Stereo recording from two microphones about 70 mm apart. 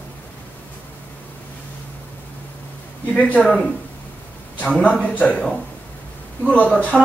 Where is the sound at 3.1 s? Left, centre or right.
Centre.